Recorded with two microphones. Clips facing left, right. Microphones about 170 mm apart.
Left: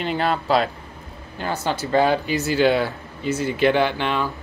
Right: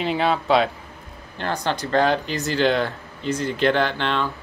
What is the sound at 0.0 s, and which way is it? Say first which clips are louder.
Speech: right 1 dB; centre (ahead or behind).